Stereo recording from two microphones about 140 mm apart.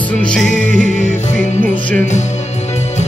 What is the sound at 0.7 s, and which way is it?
Music, 5° left (ahead or behind).